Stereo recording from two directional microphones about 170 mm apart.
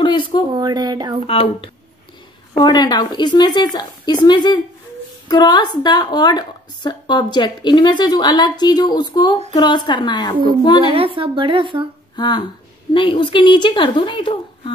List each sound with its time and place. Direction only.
0.0 s a sound: 25° left (ahead or behind)
0.6 s speech: 25° right (ahead or behind)
1.2 s a woman's voice: 35° left (ahead or behind)
10.9 s speech: 30° right (ahead or behind)
12.2 s a woman's voice: 25° left (ahead or behind)